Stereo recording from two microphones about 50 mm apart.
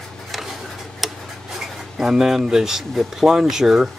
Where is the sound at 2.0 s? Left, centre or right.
Centre.